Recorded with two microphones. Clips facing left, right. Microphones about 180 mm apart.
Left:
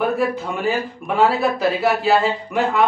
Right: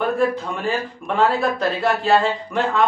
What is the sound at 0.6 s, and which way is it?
Speech, 5° left (ahead or behind).